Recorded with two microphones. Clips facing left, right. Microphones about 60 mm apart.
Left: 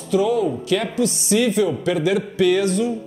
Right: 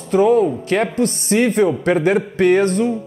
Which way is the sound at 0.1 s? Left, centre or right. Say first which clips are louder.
Right 5 dB; right.